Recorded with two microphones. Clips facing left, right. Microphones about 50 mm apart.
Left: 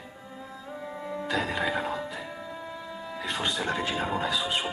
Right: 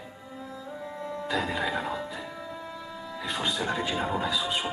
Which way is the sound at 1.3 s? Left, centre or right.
Centre.